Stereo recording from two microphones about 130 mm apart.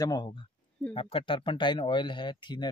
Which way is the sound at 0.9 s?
45° left (ahead or behind).